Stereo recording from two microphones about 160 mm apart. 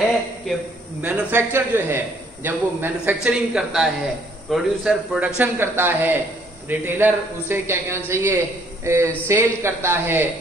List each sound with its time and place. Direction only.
1.0 s speech: 15° right (ahead or behind)